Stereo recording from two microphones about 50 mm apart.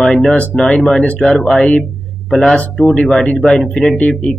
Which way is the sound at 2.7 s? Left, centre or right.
Left.